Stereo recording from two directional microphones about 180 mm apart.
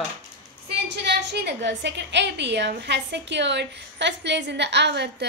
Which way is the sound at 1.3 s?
75° right (ahead or behind).